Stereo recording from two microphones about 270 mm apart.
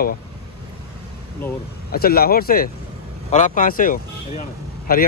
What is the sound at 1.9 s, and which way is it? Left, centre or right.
Speech, left.